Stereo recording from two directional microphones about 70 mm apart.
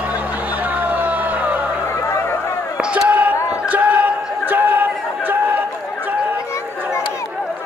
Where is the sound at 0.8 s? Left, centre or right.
Right.